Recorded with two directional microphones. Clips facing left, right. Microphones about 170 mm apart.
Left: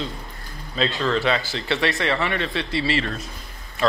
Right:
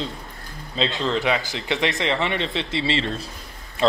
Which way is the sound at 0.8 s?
20° right (ahead or behind).